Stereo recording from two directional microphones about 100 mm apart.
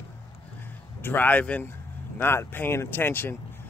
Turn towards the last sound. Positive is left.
turn(degrees=20)  # may be behind; listen again after turning